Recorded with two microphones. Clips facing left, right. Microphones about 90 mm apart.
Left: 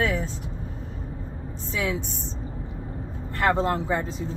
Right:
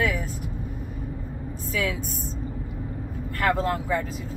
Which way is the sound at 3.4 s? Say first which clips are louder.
Left 2 dB; 30° left (ahead or behind).